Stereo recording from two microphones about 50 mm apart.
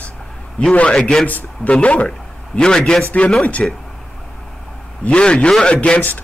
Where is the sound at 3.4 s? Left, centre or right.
Left.